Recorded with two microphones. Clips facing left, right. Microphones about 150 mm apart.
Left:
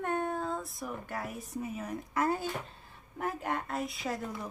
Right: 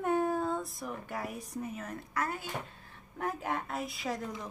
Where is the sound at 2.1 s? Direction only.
30° left (ahead or behind).